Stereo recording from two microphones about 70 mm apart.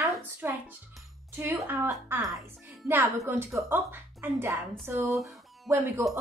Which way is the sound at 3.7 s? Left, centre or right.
Right.